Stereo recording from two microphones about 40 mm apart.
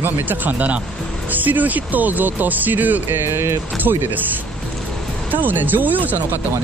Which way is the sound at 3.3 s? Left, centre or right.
Right.